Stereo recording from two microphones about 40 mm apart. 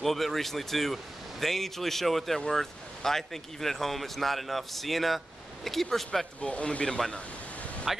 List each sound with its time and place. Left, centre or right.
0.0 s speech: centre
6.4 s speech: left
6.9 s speech: centre
7.9 s speech: centre